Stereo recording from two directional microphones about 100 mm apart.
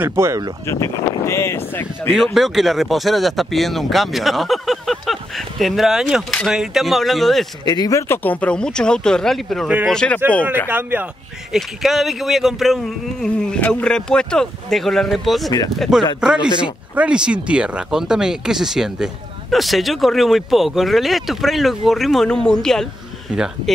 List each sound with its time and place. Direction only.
0.0 s speech: 25° right (ahead or behind)
0.7 s speech: 30° left (ahead or behind)
2.3 s speech: 5° right (ahead or behind)
7.6 s speech: 40° left (ahead or behind)
8.1 s speech: 15° left (ahead or behind)
10.7 s speech: 20° right (ahead or behind)
11.5 s speech: centre (ahead or behind)
23.3 s speech: 10° right (ahead or behind)